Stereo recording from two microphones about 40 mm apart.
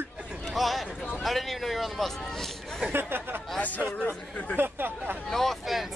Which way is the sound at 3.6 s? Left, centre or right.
Left.